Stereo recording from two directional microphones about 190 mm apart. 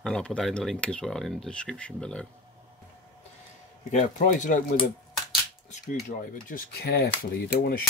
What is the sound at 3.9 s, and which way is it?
Speech, 45° left (ahead or behind).